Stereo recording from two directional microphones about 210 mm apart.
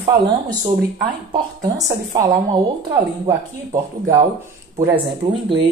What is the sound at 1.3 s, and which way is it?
Speech, 15° right (ahead or behind).